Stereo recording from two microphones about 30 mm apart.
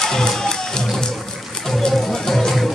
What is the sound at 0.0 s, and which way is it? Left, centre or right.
Music, centre.